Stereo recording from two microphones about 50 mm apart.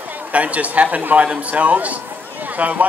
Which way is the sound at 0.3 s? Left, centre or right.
Right.